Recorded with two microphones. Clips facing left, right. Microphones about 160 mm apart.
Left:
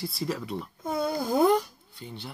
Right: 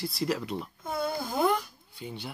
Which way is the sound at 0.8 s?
15° left (ahead or behind).